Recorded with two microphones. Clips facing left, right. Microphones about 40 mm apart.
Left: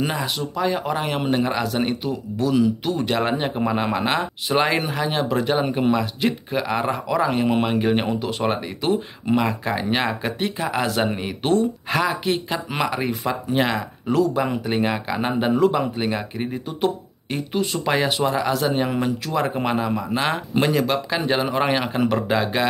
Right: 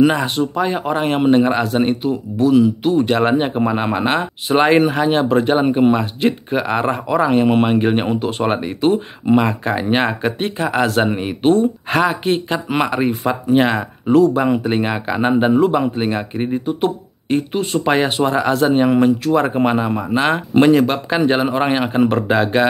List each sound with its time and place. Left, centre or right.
0.1 s speech: right
0.7 s speech: right
1.0 s speech: right
11.1 s speech: right
11.5 s speech: right